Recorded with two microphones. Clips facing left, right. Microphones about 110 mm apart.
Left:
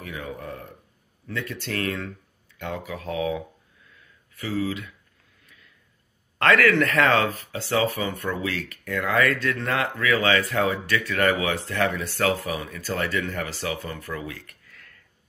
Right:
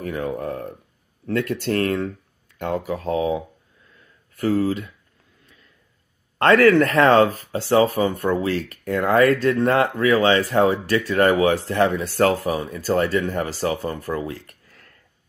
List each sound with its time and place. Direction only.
0.0 s speech: 45° right (ahead or behind)
4.4 s speech: 45° right (ahead or behind)
6.3 s speech: 35° right (ahead or behind)